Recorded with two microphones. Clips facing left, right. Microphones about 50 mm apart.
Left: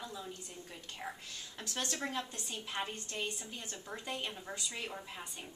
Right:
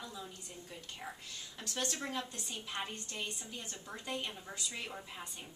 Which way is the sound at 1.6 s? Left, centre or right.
Centre.